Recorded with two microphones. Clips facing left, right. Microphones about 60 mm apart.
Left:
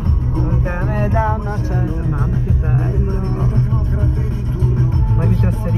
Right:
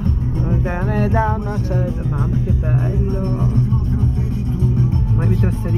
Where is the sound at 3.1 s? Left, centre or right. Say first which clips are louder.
Right 1 dB; left.